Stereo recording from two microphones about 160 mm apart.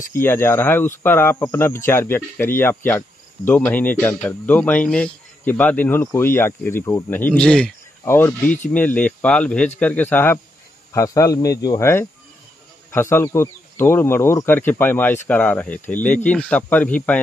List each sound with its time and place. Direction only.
0.1 s speech: 15° left (ahead or behind)